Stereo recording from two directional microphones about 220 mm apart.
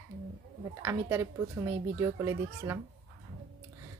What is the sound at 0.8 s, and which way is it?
Speech, 15° right (ahead or behind).